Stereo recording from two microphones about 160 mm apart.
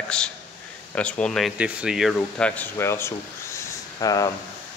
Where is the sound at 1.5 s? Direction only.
5° right (ahead or behind); by 4.3 s 20° left (ahead or behind).